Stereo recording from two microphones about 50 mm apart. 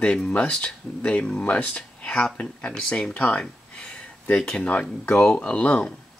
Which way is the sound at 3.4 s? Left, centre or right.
Left.